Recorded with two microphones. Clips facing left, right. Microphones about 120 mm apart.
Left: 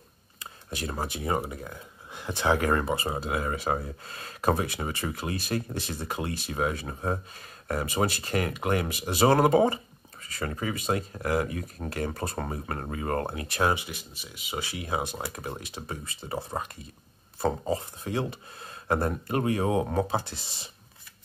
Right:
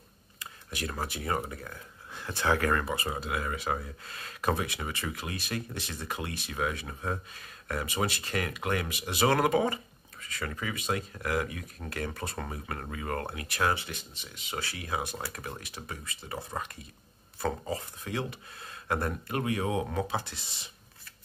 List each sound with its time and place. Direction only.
0.4 s speech: 30° left (ahead or behind)
13.7 s speech: 10° left (ahead or behind); by 20.6 s 35° left (ahead or behind)